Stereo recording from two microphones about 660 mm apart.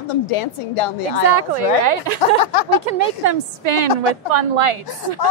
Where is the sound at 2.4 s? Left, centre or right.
Left.